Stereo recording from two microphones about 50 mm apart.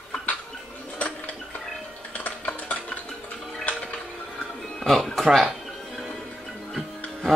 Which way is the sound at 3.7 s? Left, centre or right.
Left.